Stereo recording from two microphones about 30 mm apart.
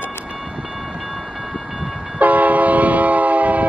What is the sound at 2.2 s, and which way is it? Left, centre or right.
Train, right.